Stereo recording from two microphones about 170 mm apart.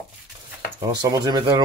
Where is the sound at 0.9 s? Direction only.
25° right (ahead or behind).